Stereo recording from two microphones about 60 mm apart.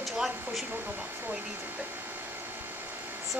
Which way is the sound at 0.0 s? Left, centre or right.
Centre.